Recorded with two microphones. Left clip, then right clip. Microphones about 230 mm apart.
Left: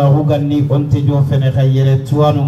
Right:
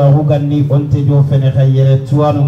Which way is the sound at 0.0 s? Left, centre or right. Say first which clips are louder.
Right 1 dB; left.